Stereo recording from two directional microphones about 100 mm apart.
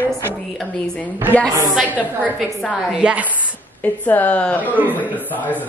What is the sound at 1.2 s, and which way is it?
Speech, 20° right (ahead or behind).